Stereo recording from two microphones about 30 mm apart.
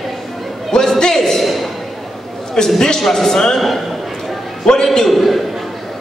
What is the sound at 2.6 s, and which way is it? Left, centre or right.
Speech, centre.